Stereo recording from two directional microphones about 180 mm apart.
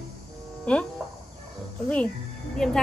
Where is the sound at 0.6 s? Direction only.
5° left (ahead or behind).